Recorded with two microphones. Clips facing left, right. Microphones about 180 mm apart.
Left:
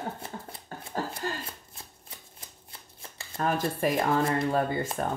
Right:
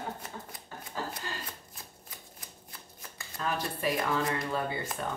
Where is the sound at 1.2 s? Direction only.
45° left (ahead or behind).